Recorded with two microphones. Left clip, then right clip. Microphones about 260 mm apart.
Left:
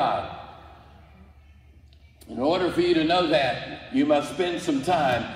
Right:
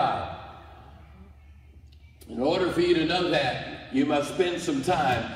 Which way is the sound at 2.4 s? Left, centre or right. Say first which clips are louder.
Left 1 dB; left.